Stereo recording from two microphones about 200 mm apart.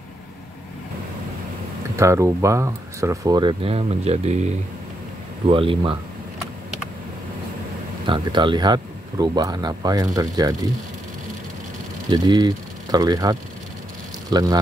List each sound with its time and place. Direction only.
2.0 s speech: 15° right (ahead or behind); by 4.5 s 35° right (ahead or behind)
5.5 s speech: 25° right (ahead or behind)
8.0 s speech: 25° right (ahead or behind)
12.1 s speech: 20° right (ahead or behind)